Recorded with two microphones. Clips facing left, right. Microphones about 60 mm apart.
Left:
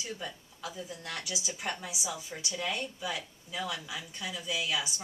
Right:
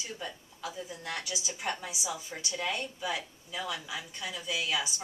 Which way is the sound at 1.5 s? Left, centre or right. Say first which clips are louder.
Right 2 dB; centre.